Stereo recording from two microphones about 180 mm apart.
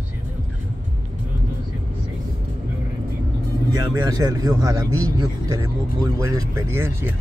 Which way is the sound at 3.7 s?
20° right (ahead or behind).